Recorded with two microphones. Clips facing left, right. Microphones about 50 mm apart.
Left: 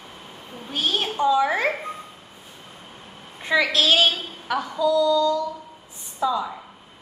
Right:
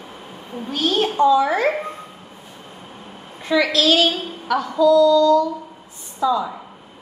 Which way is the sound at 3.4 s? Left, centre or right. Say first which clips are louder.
Right 3 dB; left.